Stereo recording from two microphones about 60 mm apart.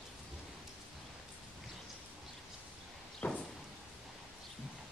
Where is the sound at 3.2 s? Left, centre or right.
Left.